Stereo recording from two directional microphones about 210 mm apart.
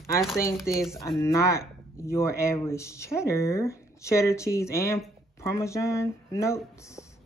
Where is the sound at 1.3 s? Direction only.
15° left (ahead or behind).